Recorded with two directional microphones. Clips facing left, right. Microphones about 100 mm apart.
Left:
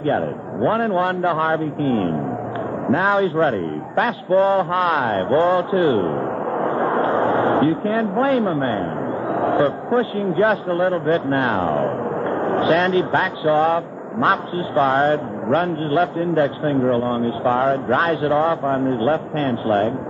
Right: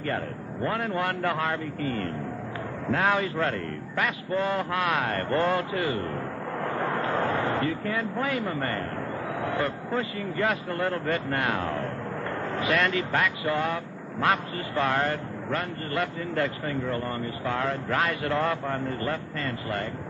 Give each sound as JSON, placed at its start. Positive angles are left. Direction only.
{"t": 0.0, "sound": "a man's voice", "side_deg": 35}
{"t": 2.9, "sound": "a man's voice", "side_deg": 25}
{"t": 6.6, "sound": "a sound", "side_deg": 30}
{"t": 9.8, "sound": "a man's voice", "side_deg": 35}